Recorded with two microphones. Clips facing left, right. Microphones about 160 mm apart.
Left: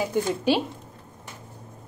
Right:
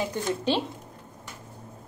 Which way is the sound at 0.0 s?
10° left (ahead or behind).